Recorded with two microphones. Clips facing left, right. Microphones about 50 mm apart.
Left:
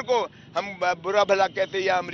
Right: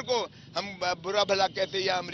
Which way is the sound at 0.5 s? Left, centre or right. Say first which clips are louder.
Left 6 dB; left.